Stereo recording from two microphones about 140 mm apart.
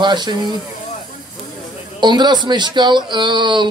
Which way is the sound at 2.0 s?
30° right (ahead or behind).